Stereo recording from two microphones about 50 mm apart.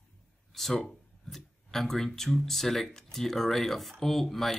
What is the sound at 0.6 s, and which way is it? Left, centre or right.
Speech, centre.